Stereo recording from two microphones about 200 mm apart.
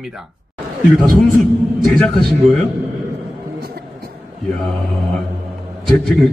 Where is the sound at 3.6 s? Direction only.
50° right (ahead or behind).